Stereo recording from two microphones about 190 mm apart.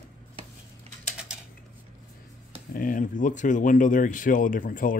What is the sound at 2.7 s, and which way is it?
Speech, 45° left (ahead or behind).